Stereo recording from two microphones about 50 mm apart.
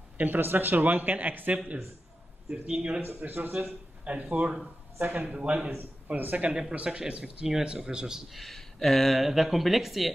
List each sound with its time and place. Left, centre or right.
0.2 s speech: right
2.5 s speech: right
3.2 s speech: right
4.0 s speech: right
6.7 s speech: right
8.3 s speech: centre